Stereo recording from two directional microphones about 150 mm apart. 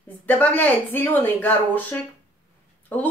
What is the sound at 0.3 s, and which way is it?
Speech, 10° left (ahead or behind).